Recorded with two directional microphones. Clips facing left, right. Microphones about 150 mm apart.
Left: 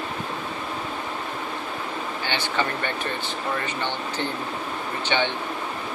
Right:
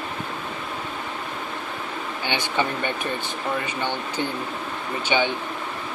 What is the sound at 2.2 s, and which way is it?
Speech, 15° right (ahead or behind).